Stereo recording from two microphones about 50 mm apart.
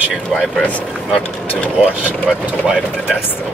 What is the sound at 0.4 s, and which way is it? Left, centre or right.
Speech, left.